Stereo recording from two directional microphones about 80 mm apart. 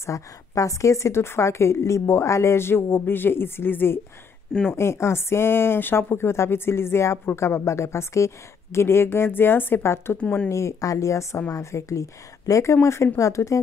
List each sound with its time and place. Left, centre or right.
0.0 s a woman's voice: left
10.2 s speech: centre
10.5 s a woman's voice: left